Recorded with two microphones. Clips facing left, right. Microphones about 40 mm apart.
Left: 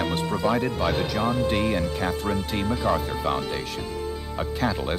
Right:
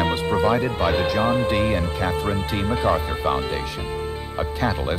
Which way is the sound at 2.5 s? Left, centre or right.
Right.